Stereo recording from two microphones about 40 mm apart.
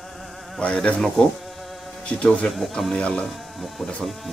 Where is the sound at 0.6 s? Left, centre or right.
Left.